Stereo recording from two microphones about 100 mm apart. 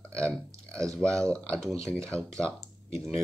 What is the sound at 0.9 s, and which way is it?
Speech, 5° left (ahead or behind).